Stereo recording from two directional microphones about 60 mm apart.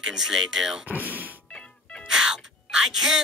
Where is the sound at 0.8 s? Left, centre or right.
Right.